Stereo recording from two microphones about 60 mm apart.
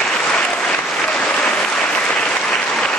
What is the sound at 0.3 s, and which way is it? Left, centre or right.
Applause, centre.